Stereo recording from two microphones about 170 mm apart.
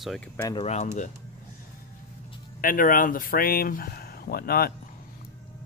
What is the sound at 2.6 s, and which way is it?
Speech, 55° left (ahead or behind).